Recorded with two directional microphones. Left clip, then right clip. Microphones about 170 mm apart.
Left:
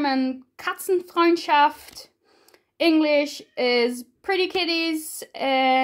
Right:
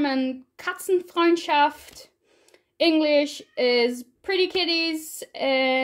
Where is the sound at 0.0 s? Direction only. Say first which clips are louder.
Left 1 dB; 10° left (ahead or behind).